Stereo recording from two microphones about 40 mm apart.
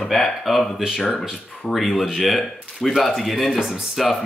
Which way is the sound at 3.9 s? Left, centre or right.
Centre.